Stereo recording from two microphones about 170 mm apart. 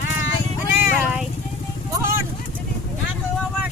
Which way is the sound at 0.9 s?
Centre (ahead or behind).